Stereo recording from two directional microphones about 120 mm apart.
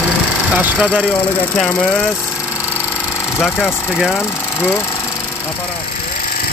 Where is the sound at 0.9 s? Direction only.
10° right (ahead or behind).